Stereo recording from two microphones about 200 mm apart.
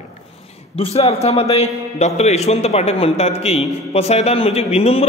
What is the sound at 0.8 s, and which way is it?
A man's voice, 30° left (ahead or behind).